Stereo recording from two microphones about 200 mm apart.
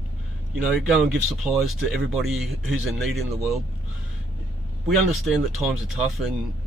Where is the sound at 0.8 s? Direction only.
Centre (ahead or behind).